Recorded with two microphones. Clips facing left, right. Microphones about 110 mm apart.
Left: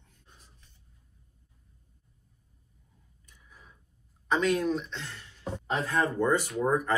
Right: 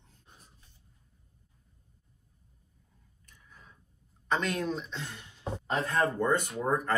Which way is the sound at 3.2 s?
5° left (ahead or behind).